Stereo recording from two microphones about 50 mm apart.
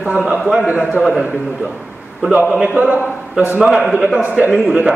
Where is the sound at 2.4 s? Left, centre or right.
Right.